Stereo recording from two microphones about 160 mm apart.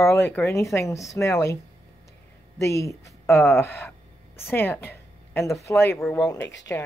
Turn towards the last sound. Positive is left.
turn(degrees=20)  # may be behind; listen again after turning